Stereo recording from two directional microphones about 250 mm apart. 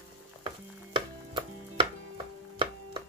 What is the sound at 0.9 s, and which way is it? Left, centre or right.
Chopping, right.